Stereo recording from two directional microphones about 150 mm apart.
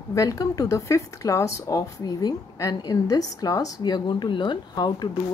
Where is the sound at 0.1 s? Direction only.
20° left (ahead or behind).